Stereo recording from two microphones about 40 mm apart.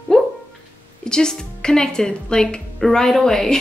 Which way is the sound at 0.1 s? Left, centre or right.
Centre.